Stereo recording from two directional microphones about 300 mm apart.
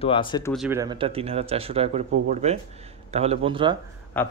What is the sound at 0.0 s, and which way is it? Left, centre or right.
Speech, centre.